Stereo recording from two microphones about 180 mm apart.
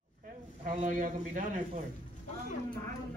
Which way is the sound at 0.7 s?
45° right (ahead or behind).